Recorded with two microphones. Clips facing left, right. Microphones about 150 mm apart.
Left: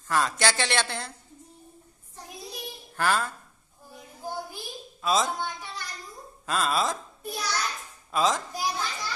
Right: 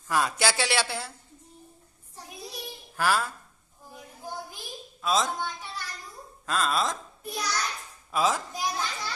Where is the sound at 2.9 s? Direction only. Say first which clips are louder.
Even; 5° right (ahead or behind).